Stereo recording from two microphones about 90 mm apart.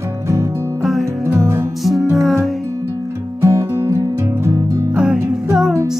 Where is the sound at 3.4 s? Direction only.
30° right (ahead or behind).